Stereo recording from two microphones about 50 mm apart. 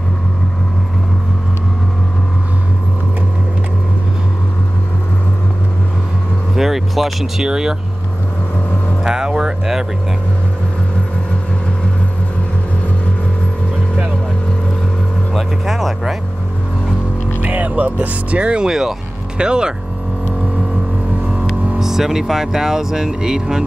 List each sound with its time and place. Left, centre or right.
6.5 s vehicle: centre
7.4 s speech: centre
9.0 s a sound: centre
15.3 s speech: centre
17.4 s speech: right
21.7 s speech: centre